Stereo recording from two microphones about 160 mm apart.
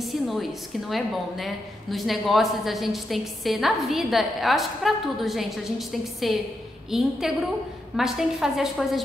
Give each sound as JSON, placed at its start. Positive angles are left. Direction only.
{"t": 0.0, "sound": "a woman's voice", "side_deg": 0}